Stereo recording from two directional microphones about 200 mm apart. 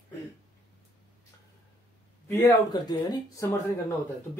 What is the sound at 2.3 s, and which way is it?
Speech, 15° left (ahead or behind).